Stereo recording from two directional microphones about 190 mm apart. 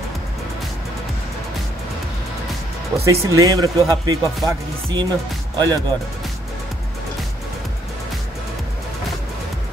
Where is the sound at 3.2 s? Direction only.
15° right (ahead or behind).